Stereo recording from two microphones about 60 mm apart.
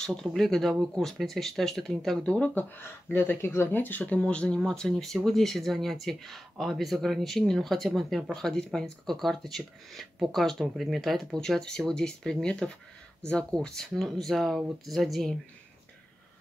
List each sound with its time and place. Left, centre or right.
0.4 s speech: centre
2.2 s speech: centre
2.5 s speech: left
4.2 s speech: centre